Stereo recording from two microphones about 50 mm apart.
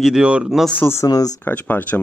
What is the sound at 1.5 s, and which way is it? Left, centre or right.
Speech, left.